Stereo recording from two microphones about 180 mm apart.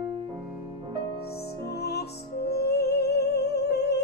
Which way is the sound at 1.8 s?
65° left (ahead or behind).